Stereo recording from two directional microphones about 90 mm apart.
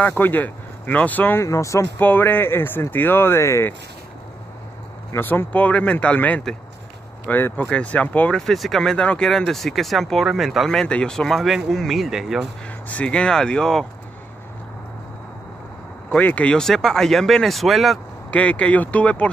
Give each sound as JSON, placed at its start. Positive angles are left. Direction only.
{"t": 0.2, "sound": "speech", "side_deg": 20}
{"t": 1.4, "sound": "speech", "side_deg": 35}
{"t": 2.0, "sound": "speech", "side_deg": 20}
{"t": 5.1, "sound": "speech", "side_deg": 25}
{"t": 8.4, "sound": "speech", "side_deg": 0}
{"t": 12.8, "sound": "speech", "side_deg": 15}
{"t": 16.1, "sound": "speech", "side_deg": 15}
{"t": 18.3, "sound": "speech", "side_deg": 15}